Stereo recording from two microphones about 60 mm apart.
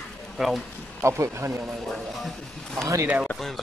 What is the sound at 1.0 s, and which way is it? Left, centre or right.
Speech, right.